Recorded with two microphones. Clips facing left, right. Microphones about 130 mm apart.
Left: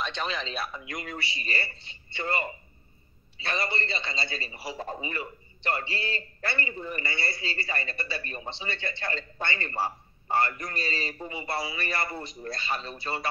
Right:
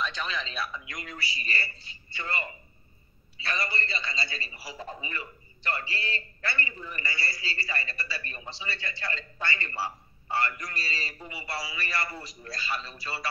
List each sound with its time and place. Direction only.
0.0 s a man's voice: 35° left (ahead or behind)
3.3 s a man's voice: 30° left (ahead or behind)
9.8 s a man's voice: 45° left (ahead or behind)
10.6 s a man's voice: 30° left (ahead or behind)